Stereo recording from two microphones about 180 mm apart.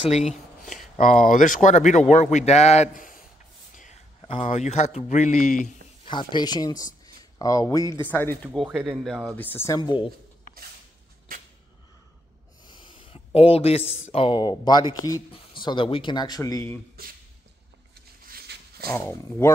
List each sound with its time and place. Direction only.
0.2 s a sound: centre (ahead or behind)
0.9 s a man's voice: 45° left (ahead or behind)
6.0 s speech: 25° left (ahead or behind)
8.6 s speech: 5° right (ahead or behind)
9.4 s speech: 10° left (ahead or behind)
12.6 s a sound: 25° left (ahead or behind)
14.1 s speech: 30° left (ahead or behind)
17.9 s a sound: 60° right (ahead or behind)
18.9 s speech: 15° left (ahead or behind)